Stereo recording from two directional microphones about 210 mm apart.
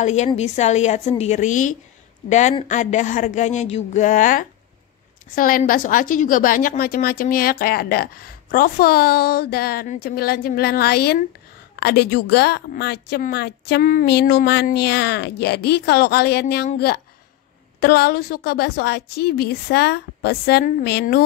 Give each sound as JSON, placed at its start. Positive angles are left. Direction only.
{"t": 0.0, "sound": "a woman's voice", "side_deg": 35}